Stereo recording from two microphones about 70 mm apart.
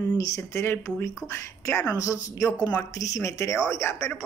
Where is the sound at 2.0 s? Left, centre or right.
Left.